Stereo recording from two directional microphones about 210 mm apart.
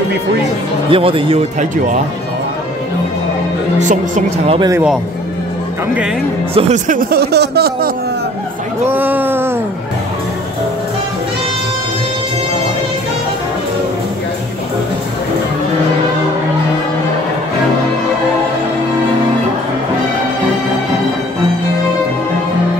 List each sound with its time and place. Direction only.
0.8 s speech: 25° right (ahead or behind)
3.8 s a woman's voice: 35° right (ahead or behind)
4.6 s speech: 15° right (ahead or behind)
6.5 s speech: 35° right (ahead or behind)
8.8 s speech: 10° right (ahead or behind)